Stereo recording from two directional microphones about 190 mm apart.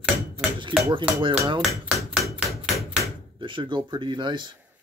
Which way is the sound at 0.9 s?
25° right (ahead or behind).